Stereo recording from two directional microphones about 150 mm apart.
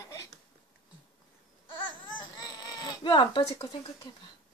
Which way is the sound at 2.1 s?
30° left (ahead or behind).